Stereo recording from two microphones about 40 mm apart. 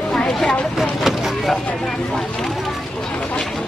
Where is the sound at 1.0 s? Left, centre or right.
Centre.